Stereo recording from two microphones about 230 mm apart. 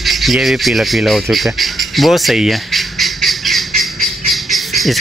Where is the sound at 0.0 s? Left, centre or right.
Centre.